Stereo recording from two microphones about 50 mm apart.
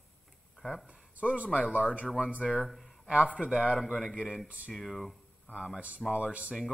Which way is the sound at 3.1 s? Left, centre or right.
Right.